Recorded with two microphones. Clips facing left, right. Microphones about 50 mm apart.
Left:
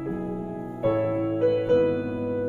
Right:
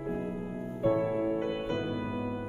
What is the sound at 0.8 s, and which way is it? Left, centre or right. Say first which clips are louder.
Music: left 4 dB; left.